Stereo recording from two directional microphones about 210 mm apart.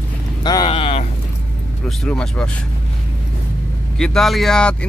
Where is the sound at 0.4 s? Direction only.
20° left (ahead or behind).